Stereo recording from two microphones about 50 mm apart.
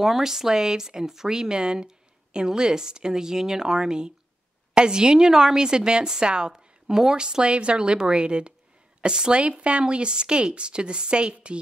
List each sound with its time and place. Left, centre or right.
0.0 s a woman's voice: centre